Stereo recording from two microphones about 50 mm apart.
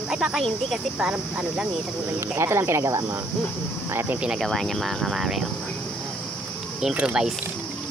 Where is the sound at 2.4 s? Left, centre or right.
Right.